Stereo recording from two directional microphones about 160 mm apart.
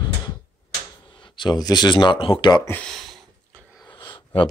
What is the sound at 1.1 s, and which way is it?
Speech, 30° left (ahead or behind).